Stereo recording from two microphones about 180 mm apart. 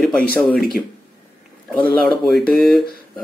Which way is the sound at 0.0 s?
5° left (ahead or behind).